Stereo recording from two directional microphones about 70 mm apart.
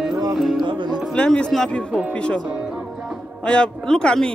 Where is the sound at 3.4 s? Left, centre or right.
Centre.